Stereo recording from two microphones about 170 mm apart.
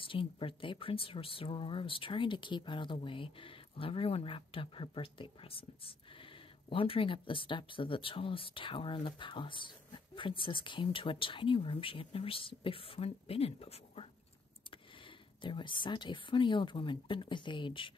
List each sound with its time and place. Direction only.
0.0 s speech: 30° left (ahead or behind)
15.4 s speech: 30° left (ahead or behind)